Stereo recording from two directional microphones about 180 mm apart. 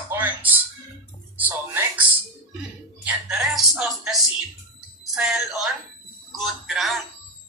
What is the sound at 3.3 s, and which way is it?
A woman's voice, 5° right (ahead or behind).